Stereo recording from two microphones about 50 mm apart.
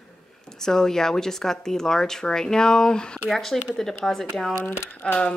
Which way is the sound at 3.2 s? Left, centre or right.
Centre.